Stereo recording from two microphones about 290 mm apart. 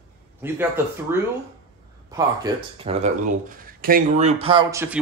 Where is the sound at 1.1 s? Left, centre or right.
Centre.